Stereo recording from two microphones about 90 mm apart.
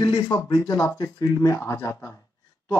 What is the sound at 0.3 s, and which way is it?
Speech, 50° left (ahead or behind).